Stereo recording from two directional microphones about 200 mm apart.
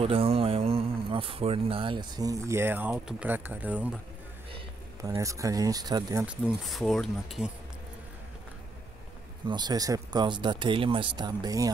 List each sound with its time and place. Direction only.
0.0 s speech: 30° right (ahead or behind); by 4.0 s 10° right (ahead or behind)
5.0 s speech: 15° right (ahead or behind)
6.2 s speech: 5° right (ahead or behind)
9.5 s speech: 20° right (ahead or behind)